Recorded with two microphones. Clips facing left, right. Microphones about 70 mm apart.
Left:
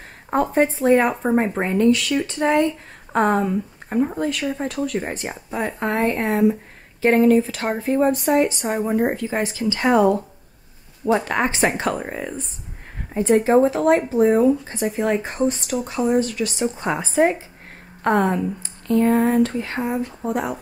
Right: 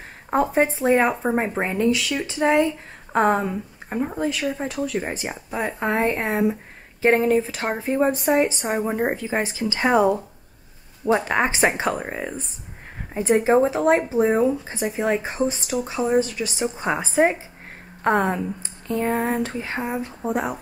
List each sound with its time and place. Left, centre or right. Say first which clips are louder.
0.3 s speech: left 1 dB; centre
1.2 s speech: left 3 dB; centre
3.9 s speech: left 3 dB; centre
5.9 s speech: left 3 dB; centre
8.6 s speech: left 1 dB; centre
8.9 s speech: left 2 dB; centre